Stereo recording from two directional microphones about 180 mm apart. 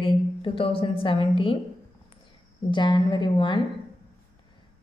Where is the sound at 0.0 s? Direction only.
30° left (ahead or behind).